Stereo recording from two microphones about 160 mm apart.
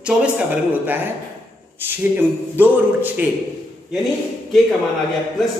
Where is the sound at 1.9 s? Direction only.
10° right (ahead or behind).